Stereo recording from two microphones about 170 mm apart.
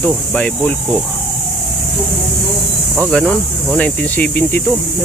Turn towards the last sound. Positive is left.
turn(degrees=10)  # may be behind; listen again after turning